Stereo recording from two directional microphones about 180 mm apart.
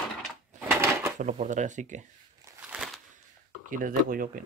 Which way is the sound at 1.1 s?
45° right (ahead or behind).